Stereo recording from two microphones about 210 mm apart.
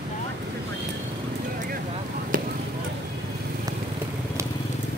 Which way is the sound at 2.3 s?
40° right (ahead or behind).